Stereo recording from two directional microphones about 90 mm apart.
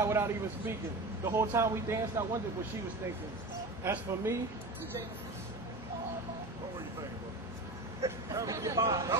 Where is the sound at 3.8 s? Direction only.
30° right (ahead or behind).